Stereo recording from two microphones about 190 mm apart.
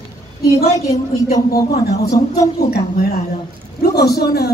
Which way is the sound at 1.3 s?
50° left (ahead or behind).